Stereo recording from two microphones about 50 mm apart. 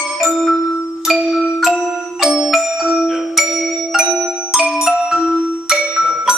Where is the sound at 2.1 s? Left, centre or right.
Centre.